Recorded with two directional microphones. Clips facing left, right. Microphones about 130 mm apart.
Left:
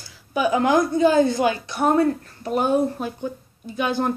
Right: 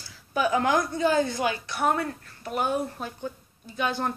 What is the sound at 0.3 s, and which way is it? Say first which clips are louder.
A woman's voice: left 4 dB; 15° left (ahead or behind).